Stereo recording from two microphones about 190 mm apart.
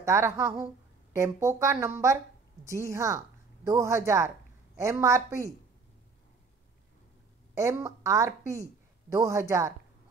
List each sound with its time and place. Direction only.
0.0 s a woman's voice: 15° right (ahead or behind)
7.5 s a woman's voice: 15° right (ahead or behind)